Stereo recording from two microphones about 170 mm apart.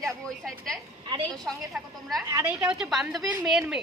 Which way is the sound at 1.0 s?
30° right (ahead or behind).